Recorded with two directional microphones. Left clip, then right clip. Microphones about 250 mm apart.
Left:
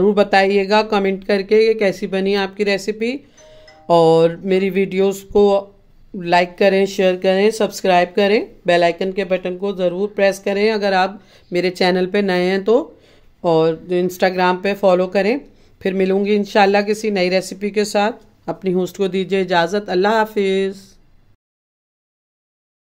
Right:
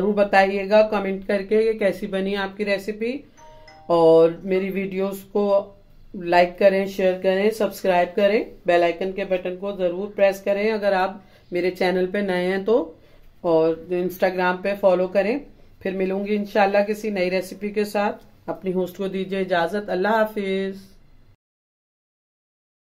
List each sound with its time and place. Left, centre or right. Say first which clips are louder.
0.0 s speech: left 4 dB; left